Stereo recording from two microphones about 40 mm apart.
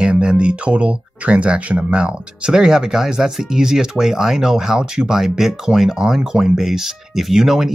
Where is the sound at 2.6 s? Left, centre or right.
Centre.